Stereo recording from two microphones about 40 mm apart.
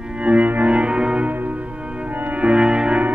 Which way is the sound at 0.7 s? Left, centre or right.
Right.